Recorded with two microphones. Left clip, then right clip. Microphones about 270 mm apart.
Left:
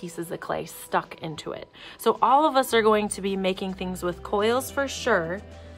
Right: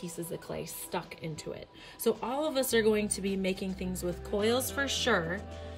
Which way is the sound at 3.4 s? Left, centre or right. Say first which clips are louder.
Left 9 dB; left.